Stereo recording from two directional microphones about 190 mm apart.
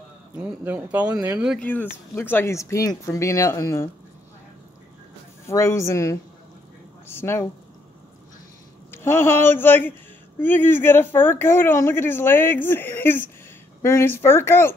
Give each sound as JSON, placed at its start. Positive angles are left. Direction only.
{"t": 0.4, "sound": "speech", "side_deg": -5}
{"t": 1.7, "sound": "speech", "side_deg": 10}
{"t": 5.5, "sound": "speech", "side_deg": 15}
{"t": 8.9, "sound": "speech", "side_deg": 10}